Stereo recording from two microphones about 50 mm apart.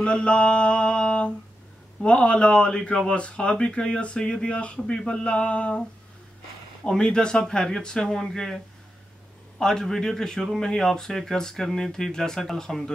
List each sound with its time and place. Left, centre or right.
0.0 s a sound: left
2.0 s speech: left
6.8 s speech: centre
9.6 s speech: centre